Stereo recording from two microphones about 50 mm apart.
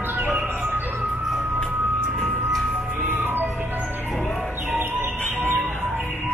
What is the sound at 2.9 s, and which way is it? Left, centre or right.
Music, right.